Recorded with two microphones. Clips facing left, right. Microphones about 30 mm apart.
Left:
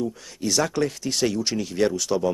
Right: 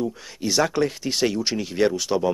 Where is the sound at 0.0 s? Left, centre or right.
Centre.